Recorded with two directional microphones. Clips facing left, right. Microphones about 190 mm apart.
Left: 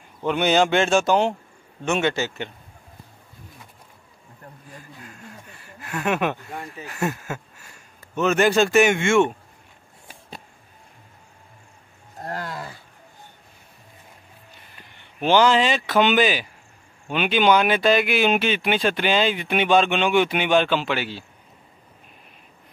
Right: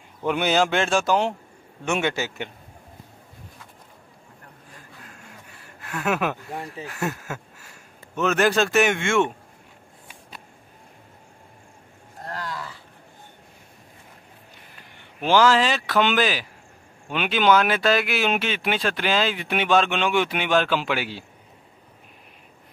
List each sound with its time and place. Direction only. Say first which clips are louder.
0.2 s speech: left 2 dB; 5° right (ahead or behind)
1.9 s speech: left 2 dB; 10° right (ahead or behind)
5.6 s a sound: left 2 dB; centre (ahead or behind)
6.5 s speech: right 2 dB; 30° right (ahead or behind)
6.9 s speech: left 4 dB; centre (ahead or behind)
12.2 s roaring cats: left 2 dB; 45° left (ahead or behind)
15.2 s speech: left 1 dB; centre (ahead or behind)